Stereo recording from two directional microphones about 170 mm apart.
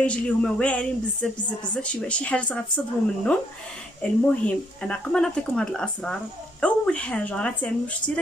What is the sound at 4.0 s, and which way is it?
Speech, 5° left (ahead or behind).